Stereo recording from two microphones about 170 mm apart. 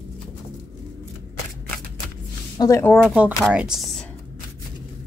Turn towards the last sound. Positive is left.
turn(degrees=0)  # may be behind; listen again after turning